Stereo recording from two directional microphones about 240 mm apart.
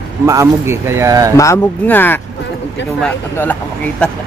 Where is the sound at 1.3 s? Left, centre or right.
Centre.